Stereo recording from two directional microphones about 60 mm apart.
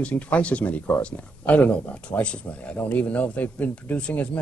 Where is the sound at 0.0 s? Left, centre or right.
Left.